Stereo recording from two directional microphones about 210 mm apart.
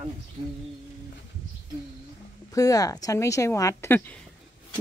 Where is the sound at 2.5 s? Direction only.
15° left (ahead or behind).